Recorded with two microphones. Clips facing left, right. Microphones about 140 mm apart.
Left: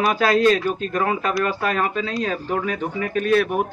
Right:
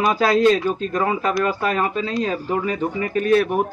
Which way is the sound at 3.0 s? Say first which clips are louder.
Right 1 dB; 25° right (ahead or behind).